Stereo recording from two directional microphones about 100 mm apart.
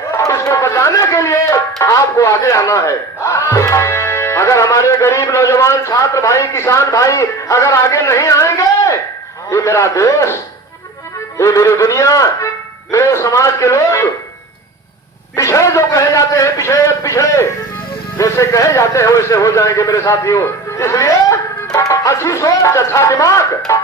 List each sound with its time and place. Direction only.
0.2 s a man's voice: 30° left (ahead or behind)
11.3 s speech: 30° left (ahead or behind)
15.3 s a man's voice: 30° left (ahead or behind)